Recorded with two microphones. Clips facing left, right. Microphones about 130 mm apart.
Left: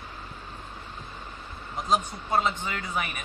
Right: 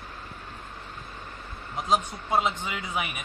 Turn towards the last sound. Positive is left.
turn(degrees=0)  # may be behind; listen again after turning